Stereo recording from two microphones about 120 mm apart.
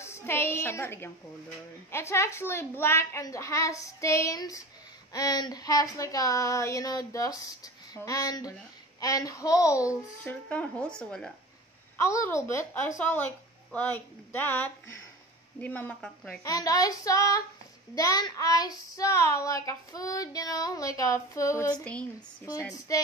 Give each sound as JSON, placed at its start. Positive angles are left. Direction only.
{"t": 0.0, "sound": "a sound", "side_deg": 20}
{"t": 1.9, "sound": "child singing", "side_deg": 20}
{"t": 10.5, "sound": "speech", "side_deg": 10}
{"t": 12.3, "sound": "child singing", "side_deg": 25}
{"t": 13.0, "sound": "a woman's voice", "side_deg": 15}
{"t": 16.4, "sound": "child singing", "side_deg": 30}